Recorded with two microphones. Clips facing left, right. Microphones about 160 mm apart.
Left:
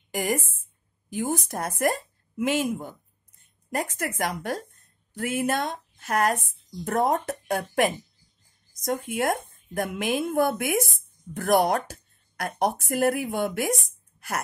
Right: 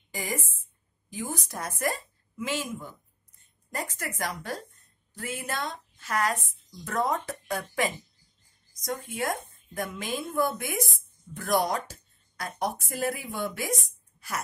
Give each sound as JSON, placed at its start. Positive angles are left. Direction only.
{"t": 0.1, "sound": "a woman's voice", "side_deg": 60}
{"t": 4.2, "sound": "speech", "side_deg": 60}